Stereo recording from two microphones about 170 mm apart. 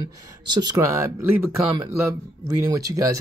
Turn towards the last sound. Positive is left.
turn(degrees=-20)  # may be behind; listen again after turning